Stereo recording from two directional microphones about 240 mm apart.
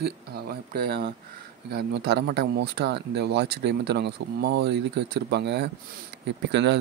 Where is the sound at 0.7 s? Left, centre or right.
Right.